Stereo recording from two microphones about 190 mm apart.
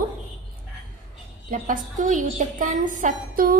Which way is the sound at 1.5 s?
45° right (ahead or behind).